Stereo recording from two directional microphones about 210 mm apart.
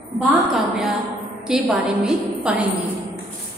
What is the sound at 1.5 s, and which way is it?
A woman's voice, 5° right (ahead or behind).